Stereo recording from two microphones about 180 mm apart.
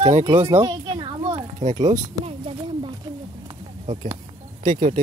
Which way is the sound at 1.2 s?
40° right (ahead or behind).